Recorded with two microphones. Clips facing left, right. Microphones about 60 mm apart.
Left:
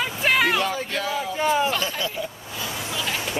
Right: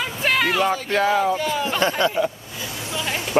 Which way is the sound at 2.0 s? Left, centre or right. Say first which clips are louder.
Right 8 dB; right.